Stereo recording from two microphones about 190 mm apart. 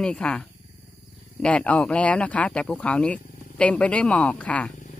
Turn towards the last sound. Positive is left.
turn(degrees=40)  # may be behind; listen again after turning